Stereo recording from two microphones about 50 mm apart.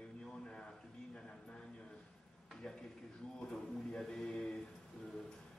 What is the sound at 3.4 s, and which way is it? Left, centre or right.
A man's voice, centre.